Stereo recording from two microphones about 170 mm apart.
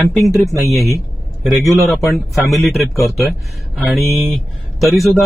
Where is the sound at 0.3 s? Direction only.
Centre (ahead or behind).